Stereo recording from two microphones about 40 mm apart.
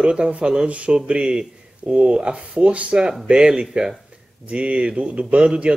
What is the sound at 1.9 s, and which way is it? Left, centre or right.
Speech, right.